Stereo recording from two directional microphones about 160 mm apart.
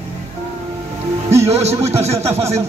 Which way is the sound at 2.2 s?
15° right (ahead or behind).